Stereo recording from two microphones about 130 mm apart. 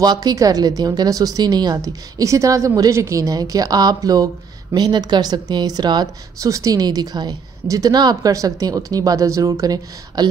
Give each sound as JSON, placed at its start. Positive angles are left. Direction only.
{"t": 0.0, "sound": "a woman's voice", "side_deg": -30}